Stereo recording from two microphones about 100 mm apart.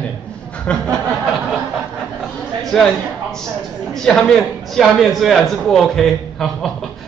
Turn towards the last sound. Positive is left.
turn(degrees=0)  # may be behind; listen again after turning